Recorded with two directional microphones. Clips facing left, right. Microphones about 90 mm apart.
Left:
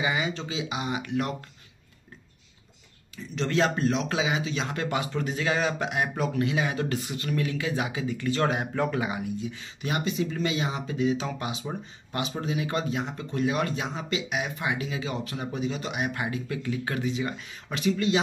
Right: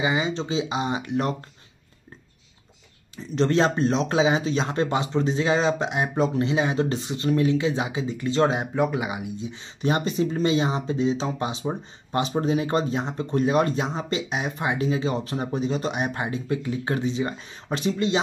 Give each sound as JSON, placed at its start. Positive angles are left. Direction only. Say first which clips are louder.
{"t": 0.0, "sound": "speech", "louder": "right 4 dB", "side_deg": -25}
{"t": 3.2, "sound": "speech", "louder": "right 5 dB", "side_deg": -35}